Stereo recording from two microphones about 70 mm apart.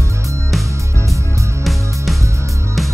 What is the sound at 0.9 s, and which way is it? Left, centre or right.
Music, right.